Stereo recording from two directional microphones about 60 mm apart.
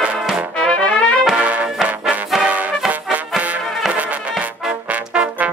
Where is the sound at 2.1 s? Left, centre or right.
Right.